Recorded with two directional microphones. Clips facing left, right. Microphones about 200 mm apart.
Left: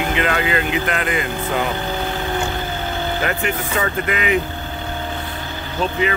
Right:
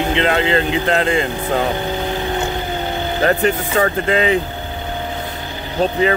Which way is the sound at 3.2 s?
35° right (ahead or behind).